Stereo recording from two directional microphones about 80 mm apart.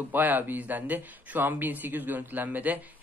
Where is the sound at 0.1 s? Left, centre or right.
Right.